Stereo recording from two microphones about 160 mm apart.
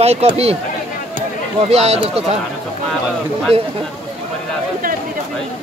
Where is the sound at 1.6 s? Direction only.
40° right (ahead or behind).